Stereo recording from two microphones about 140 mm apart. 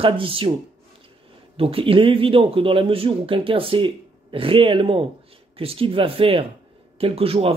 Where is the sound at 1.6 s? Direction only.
40° right (ahead or behind).